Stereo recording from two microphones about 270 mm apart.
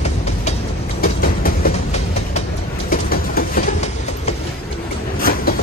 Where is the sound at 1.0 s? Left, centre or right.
Left.